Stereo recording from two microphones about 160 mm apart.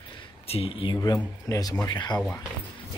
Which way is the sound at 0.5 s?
35° left (ahead or behind).